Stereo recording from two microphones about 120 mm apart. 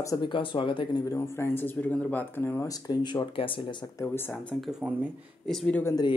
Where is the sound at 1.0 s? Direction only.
25° left (ahead or behind); by 3.9 s 40° left (ahead or behind).